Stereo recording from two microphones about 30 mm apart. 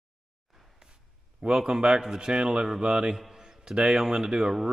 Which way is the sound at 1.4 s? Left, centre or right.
Centre.